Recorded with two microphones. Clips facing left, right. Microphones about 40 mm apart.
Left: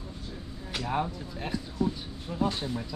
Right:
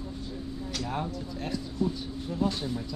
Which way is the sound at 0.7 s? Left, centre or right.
Centre.